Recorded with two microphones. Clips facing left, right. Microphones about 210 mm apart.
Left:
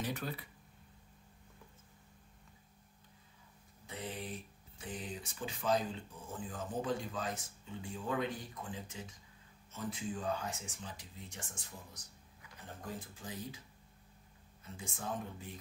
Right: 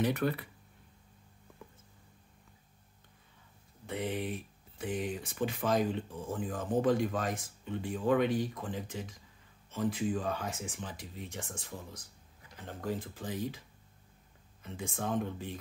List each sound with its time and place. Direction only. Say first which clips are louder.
0.0 s speech: right 9 dB; 65° right (ahead or behind)
3.8 s speech: right 9 dB; 65° right (ahead or behind)
9.7 s speech: right 9 dB; 90° right
12.6 s speech: right 9 dB; 85° right
14.6 s speech: right 7 dB; 80° right